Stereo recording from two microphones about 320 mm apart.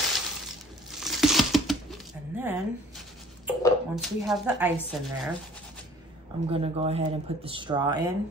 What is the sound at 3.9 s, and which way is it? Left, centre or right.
Speech, centre.